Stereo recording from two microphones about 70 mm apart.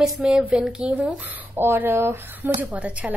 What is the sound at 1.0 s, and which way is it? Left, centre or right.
Speech, right.